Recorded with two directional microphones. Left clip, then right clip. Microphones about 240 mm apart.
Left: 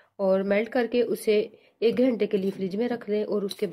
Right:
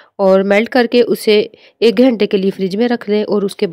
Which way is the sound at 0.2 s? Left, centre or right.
Right.